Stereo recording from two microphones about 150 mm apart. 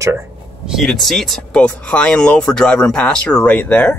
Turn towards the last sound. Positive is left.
turn(degrees=10)  # may be behind; listen again after turning